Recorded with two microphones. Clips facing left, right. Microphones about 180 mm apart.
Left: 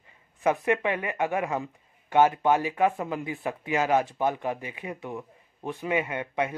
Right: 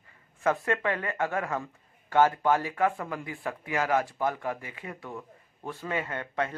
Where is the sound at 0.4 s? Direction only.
15° left (ahead or behind).